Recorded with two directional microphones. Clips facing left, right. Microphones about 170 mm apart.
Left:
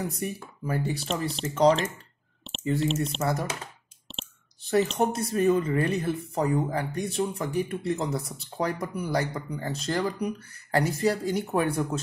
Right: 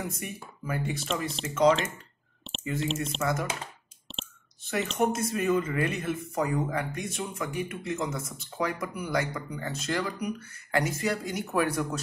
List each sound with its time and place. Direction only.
0.1 s speech: 35° left (ahead or behind)
4.1 s clicking: centre (ahead or behind)
4.6 s speech: 35° left (ahead or behind)